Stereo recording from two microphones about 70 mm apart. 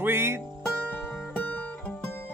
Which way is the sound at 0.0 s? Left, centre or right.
Right.